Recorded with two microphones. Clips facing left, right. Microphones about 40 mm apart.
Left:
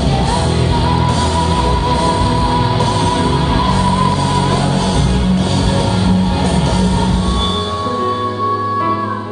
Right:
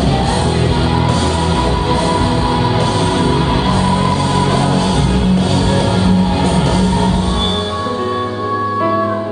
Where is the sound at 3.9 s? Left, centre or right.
Centre.